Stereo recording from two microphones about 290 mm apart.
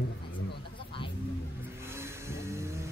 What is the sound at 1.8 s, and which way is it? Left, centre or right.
Vehicle, centre.